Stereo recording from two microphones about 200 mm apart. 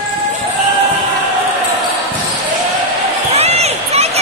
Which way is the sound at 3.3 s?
30° right (ahead or behind).